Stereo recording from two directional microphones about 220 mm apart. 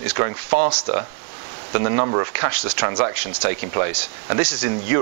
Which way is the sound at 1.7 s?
20° right (ahead or behind).